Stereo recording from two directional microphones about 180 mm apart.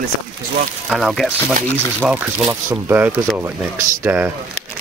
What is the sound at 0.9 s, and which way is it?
Speech, centre (ahead or behind).